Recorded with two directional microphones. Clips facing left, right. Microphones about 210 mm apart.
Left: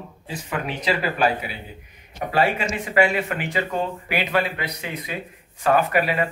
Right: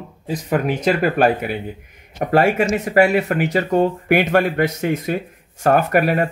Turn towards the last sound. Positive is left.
turn(degrees=-50)  # may be behind; listen again after turning